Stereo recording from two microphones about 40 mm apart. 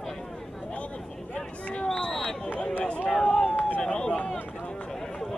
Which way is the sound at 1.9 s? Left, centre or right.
Centre.